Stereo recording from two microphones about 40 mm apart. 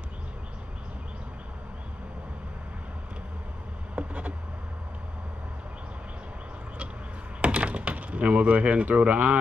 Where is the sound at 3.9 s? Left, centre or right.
Right.